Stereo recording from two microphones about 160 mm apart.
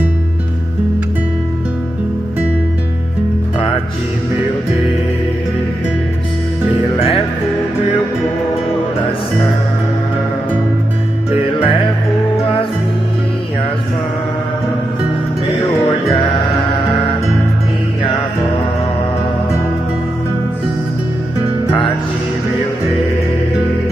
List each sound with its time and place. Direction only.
11.2 s music: 35° left (ahead or behind)